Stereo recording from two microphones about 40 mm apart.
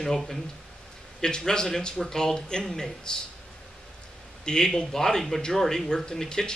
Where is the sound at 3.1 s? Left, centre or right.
Left.